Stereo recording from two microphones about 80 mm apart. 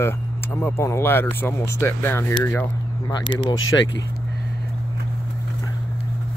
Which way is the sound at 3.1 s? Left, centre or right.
Left.